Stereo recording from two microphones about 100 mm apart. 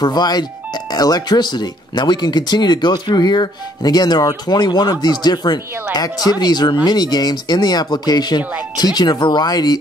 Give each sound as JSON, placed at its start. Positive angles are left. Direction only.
{"t": 0.0, "sound": "speech", "side_deg": 45}
{"t": 8.4, "sound": "speech", "side_deg": -15}
{"t": 8.7, "sound": "speech", "side_deg": 45}